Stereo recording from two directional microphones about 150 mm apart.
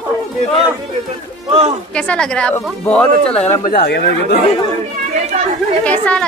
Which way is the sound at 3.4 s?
80° left.